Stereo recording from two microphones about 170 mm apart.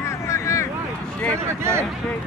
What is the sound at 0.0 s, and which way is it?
Vehicle, 15° left (ahead or behind).